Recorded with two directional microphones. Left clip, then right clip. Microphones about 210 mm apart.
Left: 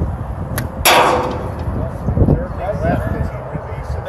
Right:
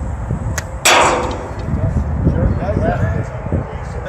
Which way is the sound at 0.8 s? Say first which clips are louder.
Even; 40° right (ahead or behind).